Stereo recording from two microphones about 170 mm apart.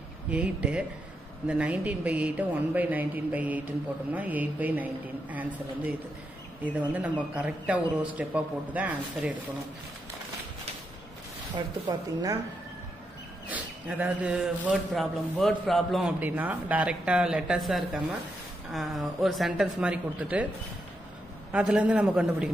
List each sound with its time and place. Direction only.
0.3 s speech: 5° right (ahead or behind)
7.3 s speech: 10° right (ahead or behind)
11.5 s speech: 25° right (ahead or behind)
13.5 s speech: 10° right (ahead or behind)
21.5 s speech: 5° right (ahead or behind)